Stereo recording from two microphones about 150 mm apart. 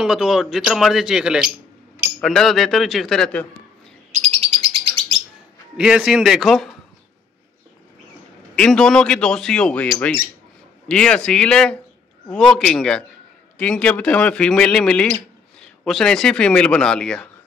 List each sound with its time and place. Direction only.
0.0 s speech: 5° right (ahead or behind)
4.1 s bird: 50° right (ahead or behind)
5.8 s speech: 5° right (ahead or behind)
8.5 s a man's voice: 5° left (ahead or behind)